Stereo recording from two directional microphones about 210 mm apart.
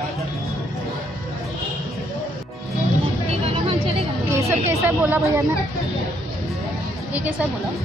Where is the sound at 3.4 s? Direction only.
25° right (ahead or behind).